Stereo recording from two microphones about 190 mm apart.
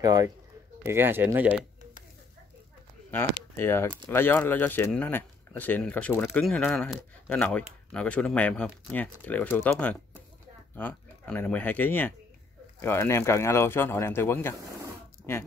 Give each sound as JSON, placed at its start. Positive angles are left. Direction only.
{"t": 0.0, "sound": "a man's voice", "side_deg": -20}
{"t": 3.1, "sound": "speech", "side_deg": 10}